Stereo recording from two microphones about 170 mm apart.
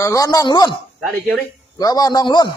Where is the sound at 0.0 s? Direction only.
20° left (ahead or behind).